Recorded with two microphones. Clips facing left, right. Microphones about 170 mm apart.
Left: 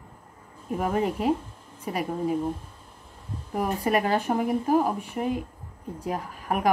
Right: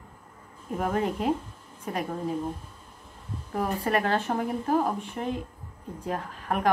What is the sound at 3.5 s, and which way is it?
A woman's voice, 10° left (ahead or behind).